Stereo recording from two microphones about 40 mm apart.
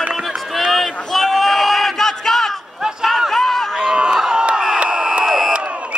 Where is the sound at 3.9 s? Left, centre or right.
Right.